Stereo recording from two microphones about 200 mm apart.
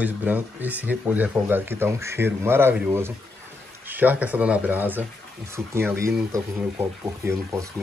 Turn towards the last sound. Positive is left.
turn(degrees=-10)  # may be behind; listen again after turning